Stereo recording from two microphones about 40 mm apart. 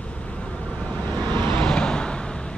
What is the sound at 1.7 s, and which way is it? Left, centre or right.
Vehicle, left.